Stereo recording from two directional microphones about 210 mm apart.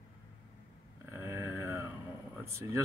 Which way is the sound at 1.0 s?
10° right (ahead or behind).